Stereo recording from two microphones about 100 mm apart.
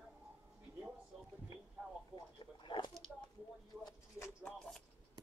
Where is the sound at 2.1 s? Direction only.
50° left (ahead or behind).